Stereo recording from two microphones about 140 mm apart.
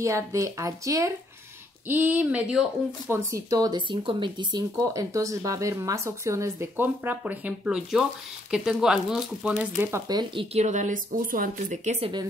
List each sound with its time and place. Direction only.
0.0 s speech: 20° right (ahead or behind)
3.1 s speech: 20° right (ahead or behind); by 9.7 s 5° right (ahead or behind)
9.8 s speech: 15° right (ahead or behind)
10.0 s speech: 30° right (ahead or behind)
10.5 s speech: 55° right (ahead or behind)